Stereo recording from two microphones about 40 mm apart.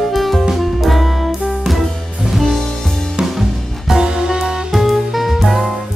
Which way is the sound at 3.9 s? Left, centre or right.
Centre.